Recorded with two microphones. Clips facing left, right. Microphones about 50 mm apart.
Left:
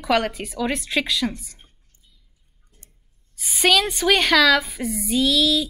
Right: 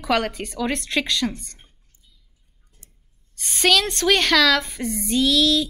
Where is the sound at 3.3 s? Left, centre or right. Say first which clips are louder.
Left 1 dB; centre.